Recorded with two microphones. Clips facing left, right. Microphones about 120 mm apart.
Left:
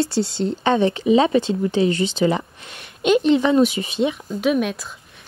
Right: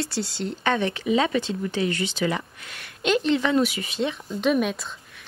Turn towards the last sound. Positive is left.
turn(degrees=0)  # may be behind; listen again after turning